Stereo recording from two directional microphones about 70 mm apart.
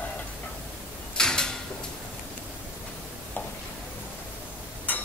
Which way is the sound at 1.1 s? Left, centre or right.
Centre.